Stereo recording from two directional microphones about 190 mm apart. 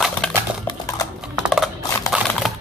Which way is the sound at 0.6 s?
20° left (ahead or behind).